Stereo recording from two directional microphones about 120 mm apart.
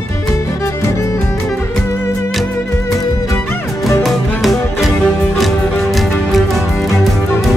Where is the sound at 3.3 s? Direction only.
20° left (ahead or behind).